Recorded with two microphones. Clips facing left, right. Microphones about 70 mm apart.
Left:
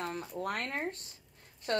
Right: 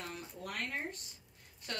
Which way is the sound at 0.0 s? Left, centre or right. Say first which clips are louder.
Left 7 dB; left.